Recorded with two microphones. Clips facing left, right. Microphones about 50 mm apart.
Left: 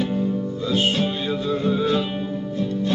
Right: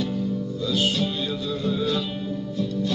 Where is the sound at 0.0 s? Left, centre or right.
Left.